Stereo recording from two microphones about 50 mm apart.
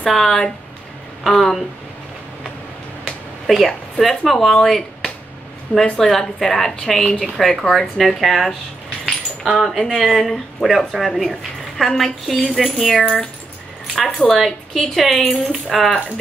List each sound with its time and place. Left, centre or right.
0.0 s a woman's voice: centre
3.1 s a woman's voice: centre
13.0 s speech: left
13.9 s a woman's voice: centre